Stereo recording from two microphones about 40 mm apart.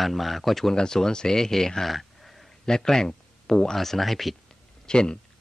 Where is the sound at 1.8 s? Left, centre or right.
Centre.